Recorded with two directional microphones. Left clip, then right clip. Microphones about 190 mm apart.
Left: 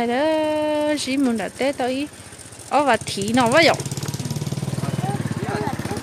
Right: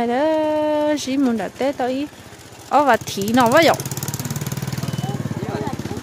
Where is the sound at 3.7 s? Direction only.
40° right (ahead or behind).